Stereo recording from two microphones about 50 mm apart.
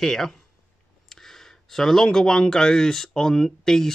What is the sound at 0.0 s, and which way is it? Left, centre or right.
Speech, centre.